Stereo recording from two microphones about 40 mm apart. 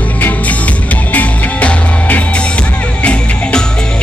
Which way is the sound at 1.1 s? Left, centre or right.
Left.